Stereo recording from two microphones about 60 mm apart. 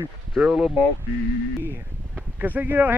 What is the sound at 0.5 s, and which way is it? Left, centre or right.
Speech, centre.